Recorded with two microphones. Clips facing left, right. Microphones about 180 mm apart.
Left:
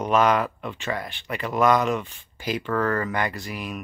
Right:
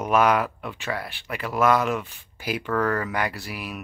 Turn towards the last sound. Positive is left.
turn(degrees=-5)  # may be behind; listen again after turning